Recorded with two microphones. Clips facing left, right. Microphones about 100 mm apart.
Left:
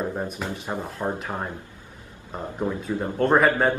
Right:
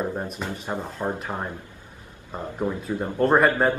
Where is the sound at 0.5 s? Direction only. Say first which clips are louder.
Even; 15° left (ahead or behind).